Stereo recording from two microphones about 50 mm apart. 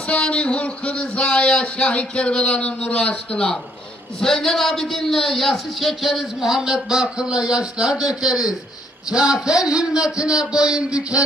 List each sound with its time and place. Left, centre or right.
0.1 s a man's voice: left; by 11.2 s right